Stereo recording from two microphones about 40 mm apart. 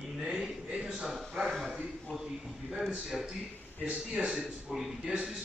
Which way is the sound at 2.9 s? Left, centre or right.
Centre.